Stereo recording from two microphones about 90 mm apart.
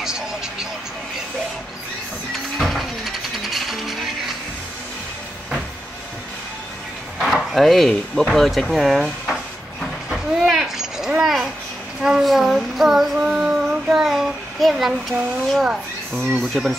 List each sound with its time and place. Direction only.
0.0 s vehicle: 5° right (ahead or behind)
2.6 s music: centre (ahead or behind)
7.2 s speech: centre (ahead or behind)
10.0 s a sound: centre (ahead or behind)
12.0 s child singing: 5° right (ahead or behind)
16.6 s speech: centre (ahead or behind)